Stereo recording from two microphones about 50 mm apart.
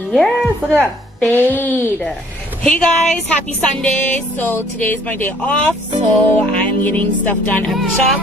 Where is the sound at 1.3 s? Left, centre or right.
Left.